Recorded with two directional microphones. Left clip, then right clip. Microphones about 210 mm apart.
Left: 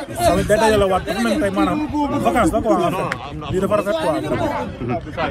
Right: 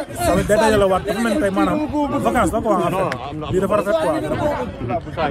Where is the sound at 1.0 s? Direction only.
20° left (ahead or behind).